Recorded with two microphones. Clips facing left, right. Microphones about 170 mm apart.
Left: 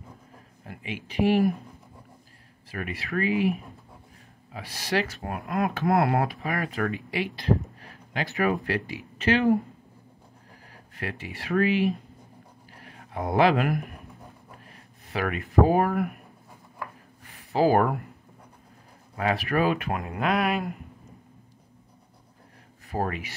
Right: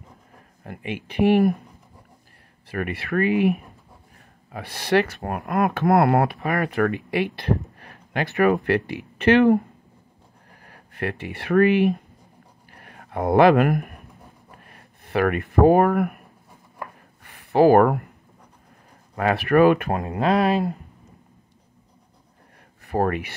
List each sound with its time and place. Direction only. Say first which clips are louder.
0.7 s speech: right 5 dB; 55° right (ahead or behind)
2.7 s speech: right 6 dB; 60° right (ahead or behind)
10.6 s speech: right 7 dB; 60° right (ahead or behind)
12.7 s a sound: right 5 dB; 55° right (ahead or behind)
14.6 s speech: right 1 dB; 60° right (ahead or behind)
17.2 s a sound: right 6 dB; 60° right (ahead or behind)
19.1 s speech: right 7 dB; 60° right (ahead or behind)
19.9 s speech: right 5 dB; 30° right (ahead or behind)
22.8 s speech: right 7 dB; 60° right (ahead or behind)